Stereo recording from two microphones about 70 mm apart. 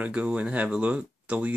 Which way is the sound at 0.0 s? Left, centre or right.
Centre.